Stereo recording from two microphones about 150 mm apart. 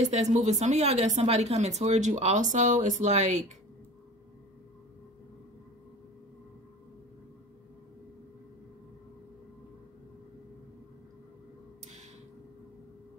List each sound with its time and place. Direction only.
0.0 s speech: 50° right (ahead or behind)